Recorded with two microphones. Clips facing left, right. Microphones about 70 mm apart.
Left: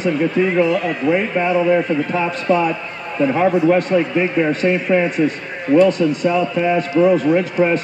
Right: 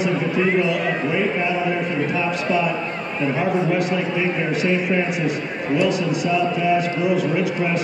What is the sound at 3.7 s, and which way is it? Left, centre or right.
A man's voice, left.